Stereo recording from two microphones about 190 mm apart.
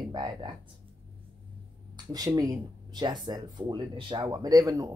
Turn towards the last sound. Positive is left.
turn(degrees=-20)  # may be behind; listen again after turning